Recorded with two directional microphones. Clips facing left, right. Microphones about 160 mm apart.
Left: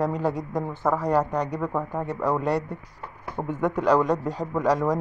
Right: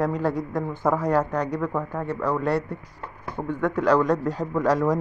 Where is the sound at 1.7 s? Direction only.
10° left (ahead or behind).